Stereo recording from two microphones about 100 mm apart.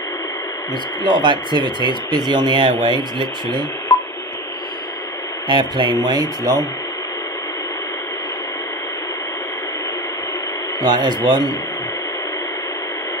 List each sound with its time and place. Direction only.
1.0 s speech: 50° right (ahead or behind)
5.5 s speech: 50° right (ahead or behind)
10.8 s speech: 45° right (ahead or behind)